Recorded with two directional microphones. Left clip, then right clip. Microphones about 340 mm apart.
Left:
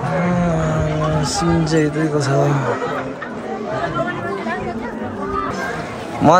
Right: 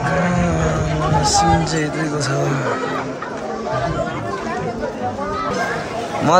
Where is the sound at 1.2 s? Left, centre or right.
Centre.